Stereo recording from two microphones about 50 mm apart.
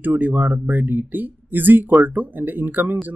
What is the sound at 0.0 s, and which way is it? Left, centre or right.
Speech, right.